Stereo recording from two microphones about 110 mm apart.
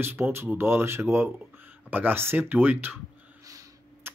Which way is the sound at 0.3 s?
20° right (ahead or behind).